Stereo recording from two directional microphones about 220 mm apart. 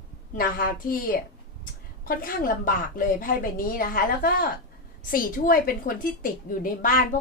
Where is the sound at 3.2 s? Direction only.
40° left (ahead or behind).